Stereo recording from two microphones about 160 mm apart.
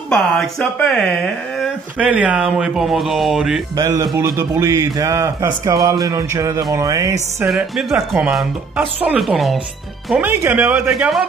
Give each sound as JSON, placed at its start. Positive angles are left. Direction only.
{"t": 0.1, "sound": "speech", "side_deg": 5}
{"t": 2.0, "sound": "speech", "side_deg": -10}
{"t": 3.7, "sound": "a man's voice", "side_deg": -20}
{"t": 7.4, "sound": "speech", "side_deg": -5}